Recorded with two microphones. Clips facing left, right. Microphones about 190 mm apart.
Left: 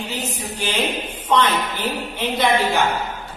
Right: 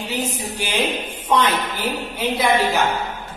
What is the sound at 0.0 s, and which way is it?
Mantra, 10° right (ahead or behind).